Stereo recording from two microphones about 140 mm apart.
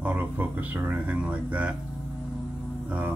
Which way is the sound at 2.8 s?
10° right (ahead or behind).